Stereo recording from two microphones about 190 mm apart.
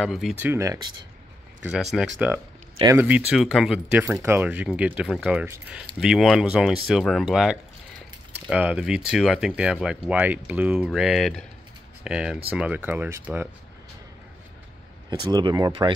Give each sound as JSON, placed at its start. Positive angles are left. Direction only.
{"t": 0.0, "sound": "speech", "side_deg": 0}
{"t": 1.6, "sound": "speech", "side_deg": -5}
{"t": 15.0, "sound": "speech", "side_deg": -20}